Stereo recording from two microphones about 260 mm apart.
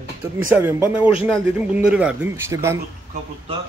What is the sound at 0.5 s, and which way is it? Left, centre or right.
A man's voice, centre.